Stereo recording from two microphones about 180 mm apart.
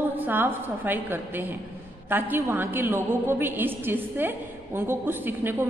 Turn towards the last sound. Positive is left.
turn(degrees=-10)  # may be behind; listen again after turning